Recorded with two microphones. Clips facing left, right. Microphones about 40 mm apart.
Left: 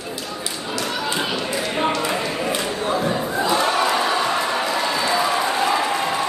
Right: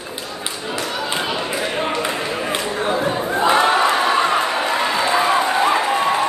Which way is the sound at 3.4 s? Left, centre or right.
Right.